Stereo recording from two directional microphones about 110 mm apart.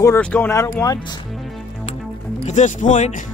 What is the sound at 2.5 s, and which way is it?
Speech, 90° left.